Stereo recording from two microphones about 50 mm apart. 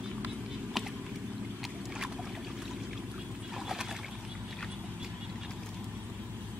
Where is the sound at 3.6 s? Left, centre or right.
Centre.